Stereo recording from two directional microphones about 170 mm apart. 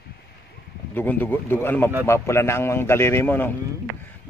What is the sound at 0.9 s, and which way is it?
A man's voice, 10° left (ahead or behind).